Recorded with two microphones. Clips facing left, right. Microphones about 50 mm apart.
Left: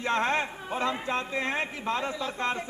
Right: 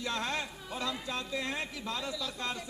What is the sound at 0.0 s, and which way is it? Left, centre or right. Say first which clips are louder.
Speech: left 8 dB; left.